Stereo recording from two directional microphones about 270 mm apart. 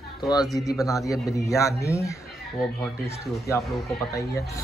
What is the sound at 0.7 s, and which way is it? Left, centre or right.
Speech, centre.